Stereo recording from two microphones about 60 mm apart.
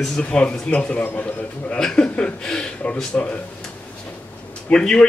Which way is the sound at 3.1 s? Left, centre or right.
Left.